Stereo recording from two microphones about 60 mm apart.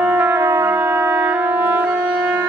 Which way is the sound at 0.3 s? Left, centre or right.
Right.